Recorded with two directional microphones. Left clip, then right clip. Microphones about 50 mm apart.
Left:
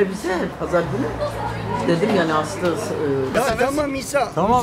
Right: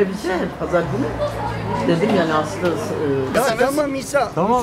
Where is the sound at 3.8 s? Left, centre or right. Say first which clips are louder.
Right 2 dB; centre.